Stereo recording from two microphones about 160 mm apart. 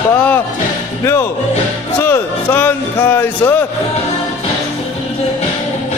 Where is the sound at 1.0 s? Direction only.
15° left (ahead or behind).